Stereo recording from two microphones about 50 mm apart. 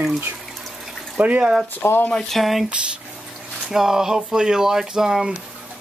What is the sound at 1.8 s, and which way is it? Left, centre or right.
Speech, left.